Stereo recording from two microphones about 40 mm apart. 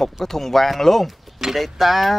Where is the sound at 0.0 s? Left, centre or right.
Centre.